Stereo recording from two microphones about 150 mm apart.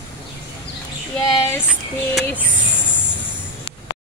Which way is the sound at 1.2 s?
15° left (ahead or behind).